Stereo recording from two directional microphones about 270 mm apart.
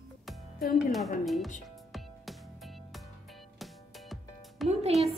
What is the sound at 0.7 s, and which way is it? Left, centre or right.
Speech, centre.